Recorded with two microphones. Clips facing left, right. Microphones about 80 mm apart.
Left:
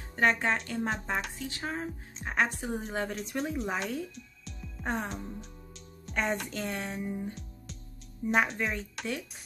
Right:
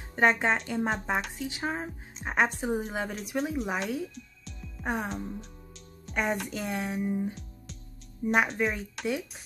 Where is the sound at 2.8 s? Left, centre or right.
Centre.